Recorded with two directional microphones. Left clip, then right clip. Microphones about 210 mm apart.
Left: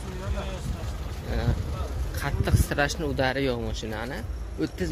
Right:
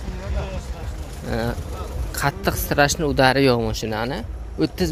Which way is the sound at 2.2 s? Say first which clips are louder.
Right 8 dB; 25° right (ahead or behind).